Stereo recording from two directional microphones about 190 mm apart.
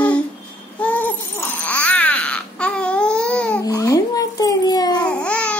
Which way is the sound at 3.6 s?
20° left (ahead or behind).